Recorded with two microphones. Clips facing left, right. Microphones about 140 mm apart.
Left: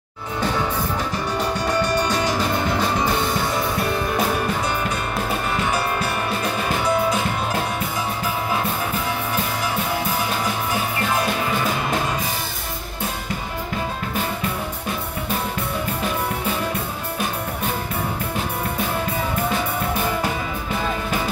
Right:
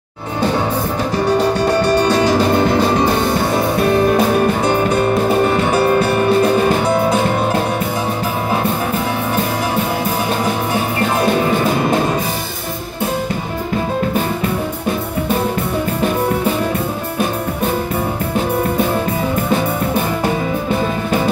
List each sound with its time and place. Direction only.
1.2 s music: 75° right (ahead or behind)
5.7 s music: 60° right (ahead or behind)